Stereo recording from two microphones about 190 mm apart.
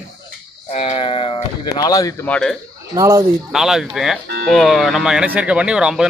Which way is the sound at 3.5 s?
Centre (ahead or behind).